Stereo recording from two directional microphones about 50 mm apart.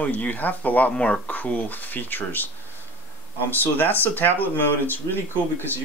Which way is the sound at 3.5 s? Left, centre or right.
Left.